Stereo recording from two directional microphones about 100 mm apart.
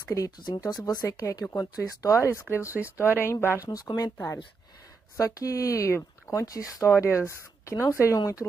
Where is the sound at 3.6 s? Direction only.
40° left (ahead or behind).